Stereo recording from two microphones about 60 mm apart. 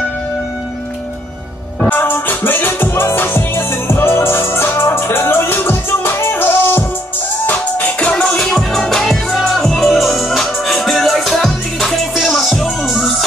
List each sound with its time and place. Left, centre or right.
1.9 s music: left; by 8.5 s centre
8.5 s music: centre